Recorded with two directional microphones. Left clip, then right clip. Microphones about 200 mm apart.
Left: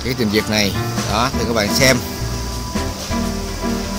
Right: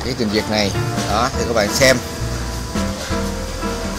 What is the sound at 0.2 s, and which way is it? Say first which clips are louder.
Speech: left 1 dB; 35° left (ahead or behind).